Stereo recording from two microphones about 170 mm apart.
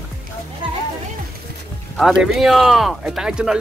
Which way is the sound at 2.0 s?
Centre (ahead or behind).